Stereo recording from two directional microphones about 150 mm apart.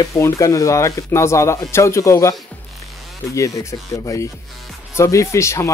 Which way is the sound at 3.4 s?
20° left (ahead or behind).